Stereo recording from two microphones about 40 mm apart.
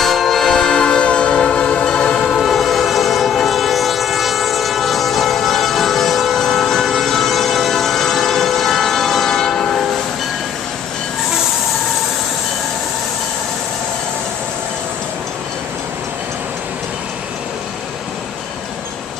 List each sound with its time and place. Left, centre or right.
0.0 s train: centre
2.3 s train: centre